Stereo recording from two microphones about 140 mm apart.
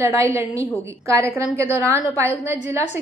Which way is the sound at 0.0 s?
20° right (ahead or behind).